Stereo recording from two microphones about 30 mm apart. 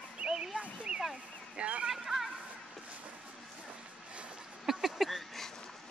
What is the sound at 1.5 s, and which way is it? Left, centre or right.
Speech, right.